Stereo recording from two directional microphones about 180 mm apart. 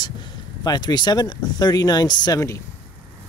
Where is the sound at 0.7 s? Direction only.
25° left (ahead or behind).